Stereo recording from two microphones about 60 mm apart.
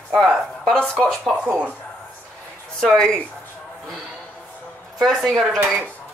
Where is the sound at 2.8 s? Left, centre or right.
Centre.